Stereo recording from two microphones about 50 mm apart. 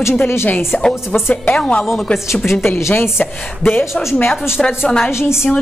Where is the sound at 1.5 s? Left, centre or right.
Centre.